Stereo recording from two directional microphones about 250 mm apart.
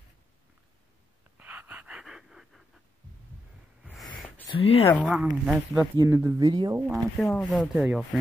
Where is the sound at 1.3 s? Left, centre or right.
Centre.